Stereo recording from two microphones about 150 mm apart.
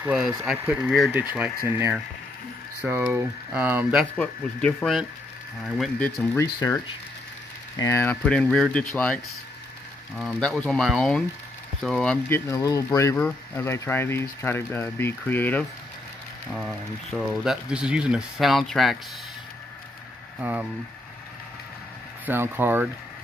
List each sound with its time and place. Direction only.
0.0 s speech: 10° right (ahead or behind)
2.8 s speech: 10° right (ahead or behind)
4.2 s speech: 10° left (ahead or behind)
6.4 s speech: 20° left (ahead or behind); by 12.2 s 5° left (ahead or behind)
12.3 s speech: 20° left (ahead or behind)
17.3 s speech: 5° right (ahead or behind)
20.3 s speech: 10° right (ahead or behind)
22.2 s speech: 15° right (ahead or behind)